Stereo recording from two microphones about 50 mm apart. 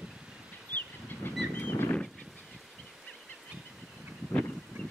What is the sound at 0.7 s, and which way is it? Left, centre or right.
Train, left.